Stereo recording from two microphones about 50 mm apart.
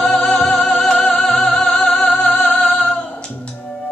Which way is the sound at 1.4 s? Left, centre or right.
Centre.